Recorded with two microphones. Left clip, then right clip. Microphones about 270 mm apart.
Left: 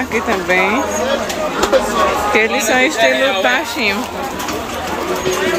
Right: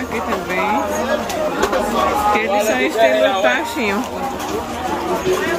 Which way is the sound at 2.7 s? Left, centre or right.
Centre.